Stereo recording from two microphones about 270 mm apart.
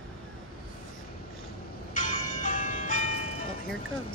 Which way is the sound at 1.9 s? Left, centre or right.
Left.